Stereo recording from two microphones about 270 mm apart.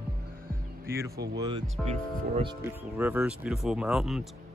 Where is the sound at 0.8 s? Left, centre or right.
Centre.